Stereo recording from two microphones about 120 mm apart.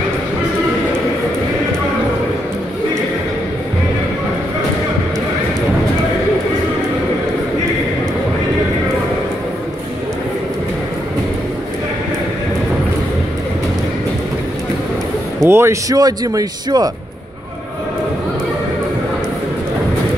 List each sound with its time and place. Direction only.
15.4 s a man's voice: 20° right (ahead or behind)